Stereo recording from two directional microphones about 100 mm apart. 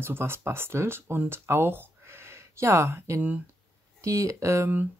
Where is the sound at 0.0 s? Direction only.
25° right (ahead or behind).